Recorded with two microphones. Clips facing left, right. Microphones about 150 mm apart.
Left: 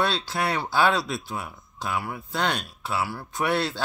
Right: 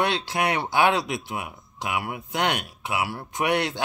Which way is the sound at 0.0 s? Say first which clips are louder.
Right 1 dB; 20° right (ahead or behind).